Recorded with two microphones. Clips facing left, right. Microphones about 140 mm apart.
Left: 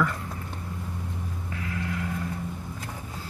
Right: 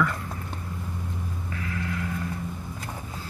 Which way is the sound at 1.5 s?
50° right (ahead or behind).